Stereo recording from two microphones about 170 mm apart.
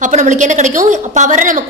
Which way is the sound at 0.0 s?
45° right (ahead or behind).